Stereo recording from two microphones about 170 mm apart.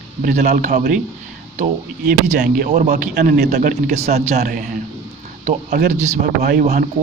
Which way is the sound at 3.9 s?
40° right (ahead or behind).